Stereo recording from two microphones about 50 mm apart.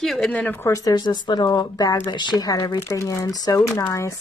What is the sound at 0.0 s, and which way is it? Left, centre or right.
Speech, centre.